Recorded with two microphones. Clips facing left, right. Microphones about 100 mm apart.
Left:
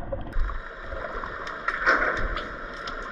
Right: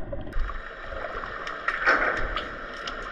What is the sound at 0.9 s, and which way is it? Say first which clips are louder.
Boat: even; 15° left (ahead or behind).